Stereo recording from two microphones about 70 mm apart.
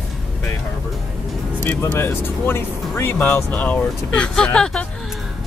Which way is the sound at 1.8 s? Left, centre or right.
Left.